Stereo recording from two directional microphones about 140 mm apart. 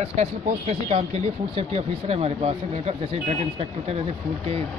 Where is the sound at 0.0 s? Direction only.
50° right (ahead or behind).